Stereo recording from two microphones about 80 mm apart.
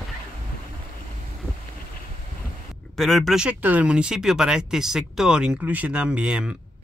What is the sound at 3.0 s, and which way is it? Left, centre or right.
Speech, centre.